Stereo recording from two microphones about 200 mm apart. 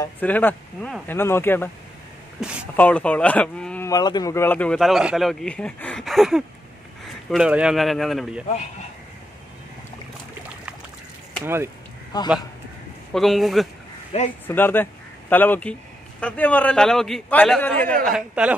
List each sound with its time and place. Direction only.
0.0 s a man's voice: 10° left (ahead or behind)
3.9 s speech: 20° left (ahead or behind); by 8.5 s centre (ahead or behind)
11.4 s speech: 10° right (ahead or behind)
12.1 s a man's voice: 20° left (ahead or behind)
13.1 s a man's voice: centre (ahead or behind)
18.0 s speech: 5° right (ahead or behind)